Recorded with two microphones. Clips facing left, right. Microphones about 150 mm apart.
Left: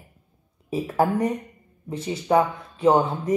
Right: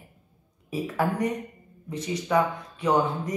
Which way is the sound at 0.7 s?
30° left (ahead or behind).